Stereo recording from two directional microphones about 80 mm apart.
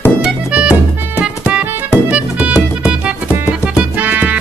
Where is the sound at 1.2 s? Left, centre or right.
Centre.